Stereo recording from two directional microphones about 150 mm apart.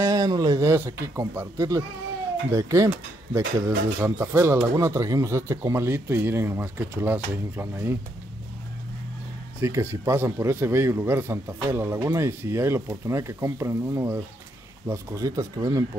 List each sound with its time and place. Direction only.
0.0 s a man's voice: 25° right (ahead or behind)
9.6 s a man's voice: 15° right (ahead or behind)